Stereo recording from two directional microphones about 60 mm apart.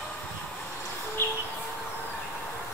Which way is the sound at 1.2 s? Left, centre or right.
Left.